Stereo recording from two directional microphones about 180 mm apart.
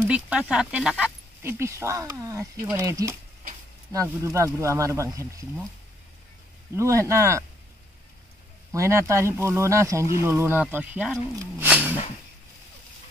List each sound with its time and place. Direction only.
0.0 s speech: 5° right (ahead or behind)
6.7 s speech: 15° right (ahead or behind)
8.7 s speech: 15° right (ahead or behind)
11.6 s a sound: 10° right (ahead or behind)